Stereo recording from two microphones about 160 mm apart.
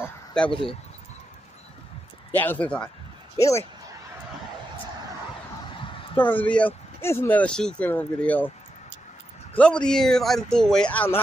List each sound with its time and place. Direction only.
0.5 s speech: 35° left (ahead or behind)
2.3 s speech: 10° left (ahead or behind)
3.3 s speech: 20° left (ahead or behind)
5.8 s a sound: 30° left (ahead or behind)
6.1 s speech: 10° left (ahead or behind)
9.6 s speech: 5° left (ahead or behind)